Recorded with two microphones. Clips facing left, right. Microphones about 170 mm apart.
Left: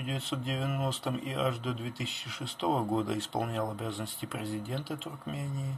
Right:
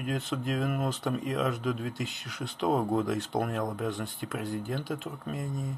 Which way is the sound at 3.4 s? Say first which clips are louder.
Right 3 dB; 50° right (ahead or behind).